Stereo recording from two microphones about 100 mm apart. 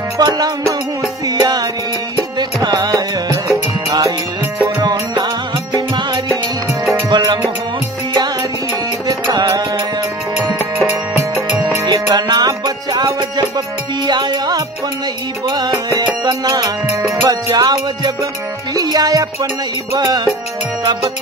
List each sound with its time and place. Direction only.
0.2 s music: 40° right (ahead or behind)
9.0 s music: 40° right (ahead or behind)
11.9 s music: 50° right (ahead or behind); by 20.2 s 30° right (ahead or behind)